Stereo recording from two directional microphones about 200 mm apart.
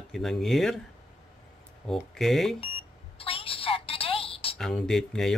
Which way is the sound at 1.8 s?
Centre (ahead or behind).